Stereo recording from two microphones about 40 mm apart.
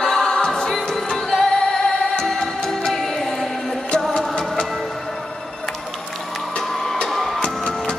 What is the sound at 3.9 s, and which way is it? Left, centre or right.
Music, left.